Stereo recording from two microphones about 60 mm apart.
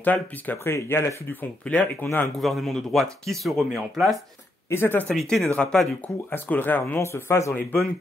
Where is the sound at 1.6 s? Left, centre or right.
Centre.